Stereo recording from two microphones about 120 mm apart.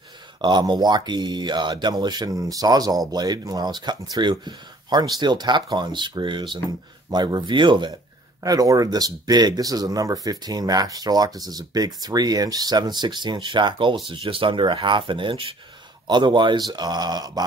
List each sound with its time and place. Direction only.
0.4 s speech: 40° right (ahead or behind)
8.4 s speech: 30° right (ahead or behind)